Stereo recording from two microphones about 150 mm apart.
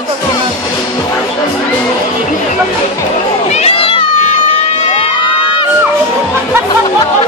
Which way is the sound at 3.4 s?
45° left (ahead or behind).